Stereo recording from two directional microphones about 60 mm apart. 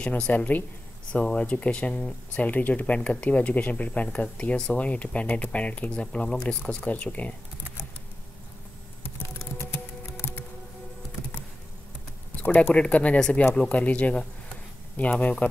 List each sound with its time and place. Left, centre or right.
0.0 s speech: left
6.8 s speech: left
12.4 s speech: left
12.7 s speech: left